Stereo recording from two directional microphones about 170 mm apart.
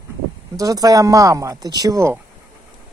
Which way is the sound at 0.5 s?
20° right (ahead or behind).